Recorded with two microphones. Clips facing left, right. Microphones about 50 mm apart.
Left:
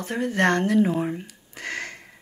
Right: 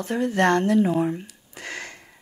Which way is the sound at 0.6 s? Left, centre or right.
Centre.